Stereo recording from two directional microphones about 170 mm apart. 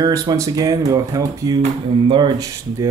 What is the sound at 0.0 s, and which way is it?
Speech, 20° right (ahead or behind).